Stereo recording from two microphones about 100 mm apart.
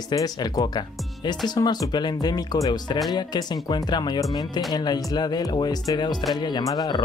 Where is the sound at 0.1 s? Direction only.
40° left (ahead or behind).